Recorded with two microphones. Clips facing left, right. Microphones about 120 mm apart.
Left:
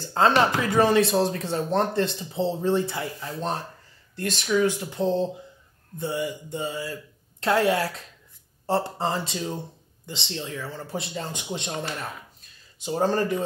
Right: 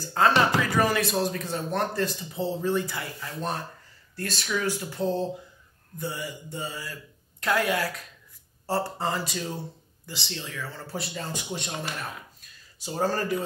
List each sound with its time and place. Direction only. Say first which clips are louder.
0.0 s speech: left 2 dB; 25° left (ahead or behind)
12.7 s speech: left 4 dB; 20° left (ahead or behind)